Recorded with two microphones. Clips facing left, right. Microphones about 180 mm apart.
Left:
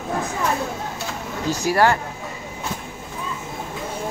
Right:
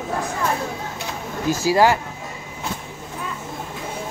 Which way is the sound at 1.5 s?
15° right (ahead or behind).